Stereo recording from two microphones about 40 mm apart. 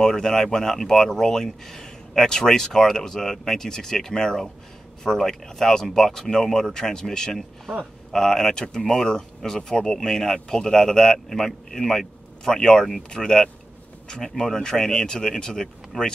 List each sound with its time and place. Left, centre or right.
0.0 s speech: centre